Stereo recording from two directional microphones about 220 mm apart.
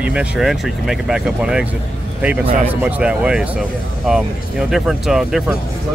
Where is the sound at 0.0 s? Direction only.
5° right (ahead or behind).